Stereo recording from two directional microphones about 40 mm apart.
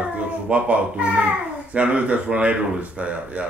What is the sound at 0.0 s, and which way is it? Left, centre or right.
A child's voice, right.